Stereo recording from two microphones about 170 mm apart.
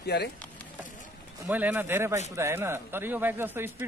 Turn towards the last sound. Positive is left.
turn(degrees=-15)  # may be behind; listen again after turning